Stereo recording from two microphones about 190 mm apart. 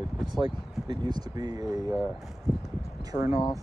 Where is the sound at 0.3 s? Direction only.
25° right (ahead or behind).